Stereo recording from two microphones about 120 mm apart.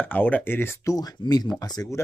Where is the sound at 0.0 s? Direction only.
15° left (ahead or behind).